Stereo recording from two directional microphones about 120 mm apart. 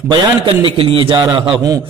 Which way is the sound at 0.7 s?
45° right (ahead or behind).